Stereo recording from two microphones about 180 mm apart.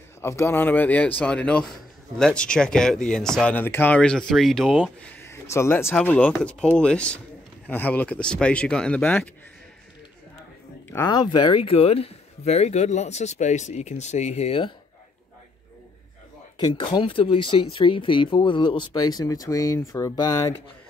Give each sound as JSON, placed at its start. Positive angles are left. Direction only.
{"t": 0.2, "sound": "speech", "side_deg": 15}
{"t": 5.1, "sound": "speech", "side_deg": 15}
{"t": 10.9, "sound": "speech", "side_deg": 20}
{"t": 16.5, "sound": "speech", "side_deg": 25}